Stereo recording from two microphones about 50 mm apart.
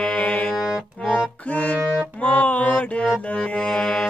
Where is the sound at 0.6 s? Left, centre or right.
Centre.